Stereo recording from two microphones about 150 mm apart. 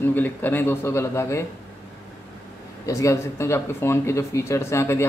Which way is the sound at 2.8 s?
20° left (ahead or behind).